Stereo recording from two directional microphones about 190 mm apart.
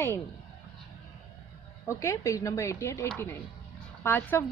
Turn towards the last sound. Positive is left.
turn(degrees=10)  # may be behind; listen again after turning